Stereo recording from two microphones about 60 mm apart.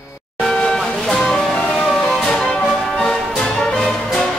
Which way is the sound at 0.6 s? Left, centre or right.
Centre.